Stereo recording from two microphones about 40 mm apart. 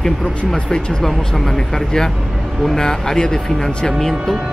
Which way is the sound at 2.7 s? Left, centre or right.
Centre.